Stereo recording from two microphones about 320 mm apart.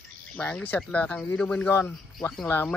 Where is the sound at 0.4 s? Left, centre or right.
Centre.